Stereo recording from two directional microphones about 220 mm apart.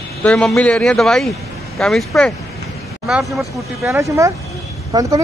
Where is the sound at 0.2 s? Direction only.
5° left (ahead or behind).